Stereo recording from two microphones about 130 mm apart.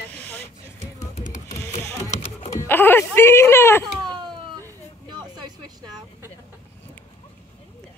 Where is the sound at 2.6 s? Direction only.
15° left (ahead or behind).